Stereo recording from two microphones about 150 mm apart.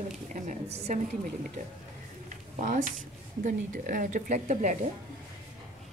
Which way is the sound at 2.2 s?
60° right (ahead or behind).